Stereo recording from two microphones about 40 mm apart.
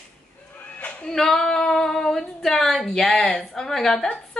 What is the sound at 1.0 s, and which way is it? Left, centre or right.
Female singing, centre.